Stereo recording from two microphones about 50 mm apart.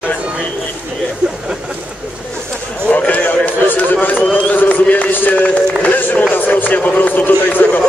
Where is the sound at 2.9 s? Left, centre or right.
Left.